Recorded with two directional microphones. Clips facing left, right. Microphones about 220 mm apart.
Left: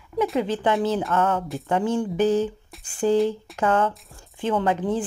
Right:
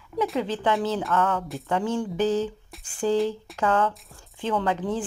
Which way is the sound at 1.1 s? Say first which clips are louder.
Left 2 dB; 25° left (ahead or behind).